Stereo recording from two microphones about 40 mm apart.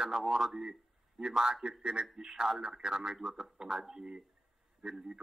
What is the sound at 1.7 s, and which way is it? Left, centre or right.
Speech, right.